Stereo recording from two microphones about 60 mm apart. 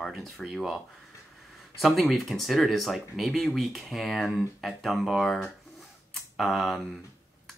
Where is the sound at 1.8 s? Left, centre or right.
Centre.